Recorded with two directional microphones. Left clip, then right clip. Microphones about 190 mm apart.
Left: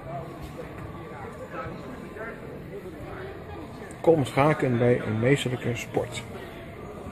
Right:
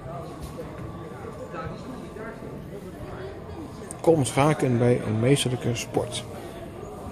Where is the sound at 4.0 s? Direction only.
5° right (ahead or behind).